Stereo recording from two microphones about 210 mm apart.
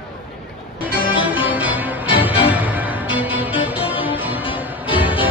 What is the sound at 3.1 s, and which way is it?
Music, 25° left (ahead or behind).